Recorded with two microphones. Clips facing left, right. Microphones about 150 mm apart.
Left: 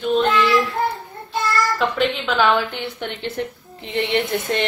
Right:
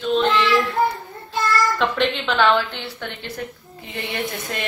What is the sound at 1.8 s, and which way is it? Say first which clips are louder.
A woman's voice: left 1 dB; 5° left (ahead or behind).